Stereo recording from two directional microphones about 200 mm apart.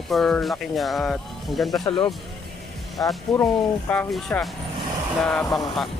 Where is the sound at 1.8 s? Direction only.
25° left (ahead or behind).